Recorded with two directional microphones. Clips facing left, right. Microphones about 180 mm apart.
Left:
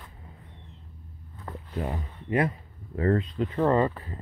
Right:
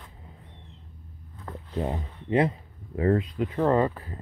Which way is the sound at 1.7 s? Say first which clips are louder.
Right 3 dB; 25° right (ahead or behind).